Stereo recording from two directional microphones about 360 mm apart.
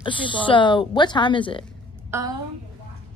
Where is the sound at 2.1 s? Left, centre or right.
Centre.